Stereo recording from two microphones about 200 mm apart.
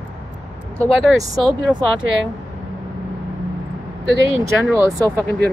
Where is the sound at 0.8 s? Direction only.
Centre (ahead or behind).